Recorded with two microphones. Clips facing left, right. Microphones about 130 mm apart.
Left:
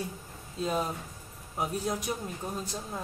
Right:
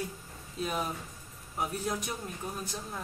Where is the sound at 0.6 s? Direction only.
25° left (ahead or behind).